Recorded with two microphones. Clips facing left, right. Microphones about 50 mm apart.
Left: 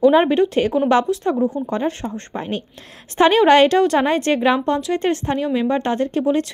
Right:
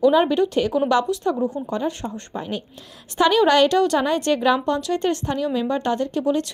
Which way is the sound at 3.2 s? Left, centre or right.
Left.